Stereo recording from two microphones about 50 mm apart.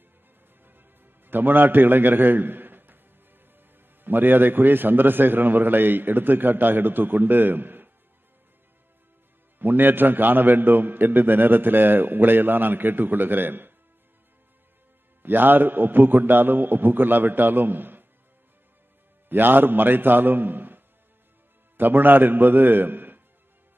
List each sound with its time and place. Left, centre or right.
0.7 s music: right
3.5 s a man's voice: right
9.6 s a man's voice: right
15.2 s a man's voice: right
19.2 s a man's voice: right